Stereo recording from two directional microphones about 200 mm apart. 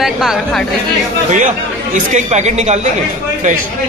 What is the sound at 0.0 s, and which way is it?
Speech, centre (ahead or behind).